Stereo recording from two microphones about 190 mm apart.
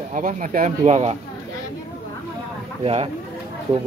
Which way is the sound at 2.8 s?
30° right (ahead or behind).